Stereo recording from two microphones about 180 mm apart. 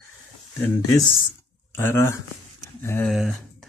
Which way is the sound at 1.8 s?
15° left (ahead or behind).